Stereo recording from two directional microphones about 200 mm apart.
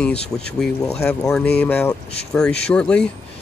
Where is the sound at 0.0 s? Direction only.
5° left (ahead or behind).